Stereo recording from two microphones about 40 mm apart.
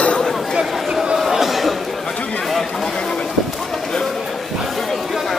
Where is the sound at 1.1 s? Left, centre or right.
Centre.